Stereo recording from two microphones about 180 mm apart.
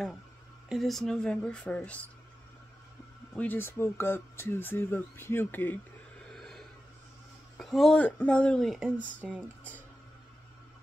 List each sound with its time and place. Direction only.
0.7 s speech: centre (ahead or behind)
3.3 s speech: 10° left (ahead or behind)
6.3 s a sound: centre (ahead or behind)
7.5 s speech: 5° left (ahead or behind)